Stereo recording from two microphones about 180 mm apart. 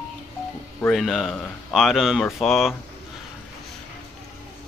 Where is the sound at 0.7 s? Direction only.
10° left (ahead or behind).